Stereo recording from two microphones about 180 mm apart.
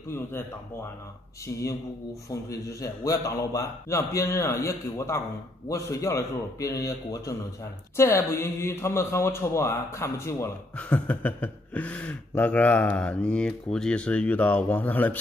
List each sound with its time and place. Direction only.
2.2 s a man's voice: 20° left (ahead or behind)